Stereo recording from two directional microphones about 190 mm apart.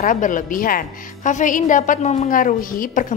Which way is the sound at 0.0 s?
45° left (ahead or behind).